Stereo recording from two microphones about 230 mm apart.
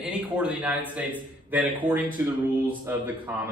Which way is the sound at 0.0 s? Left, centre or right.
Centre.